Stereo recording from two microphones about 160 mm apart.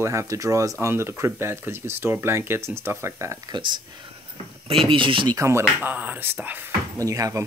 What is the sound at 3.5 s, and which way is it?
Speech, 30° right (ahead or behind).